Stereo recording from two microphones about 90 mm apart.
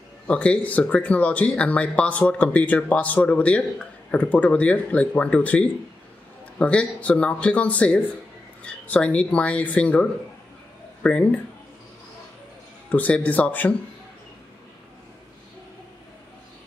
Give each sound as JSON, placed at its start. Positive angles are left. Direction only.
{"t": 0.3, "sound": "speech", "side_deg": 15}
{"t": 12.9, "sound": "speech", "side_deg": 15}